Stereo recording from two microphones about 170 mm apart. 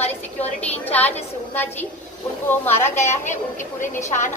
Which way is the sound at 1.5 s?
10° left (ahead or behind).